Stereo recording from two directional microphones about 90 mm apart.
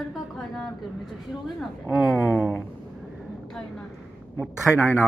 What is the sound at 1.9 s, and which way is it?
Speech, 5° right (ahead or behind).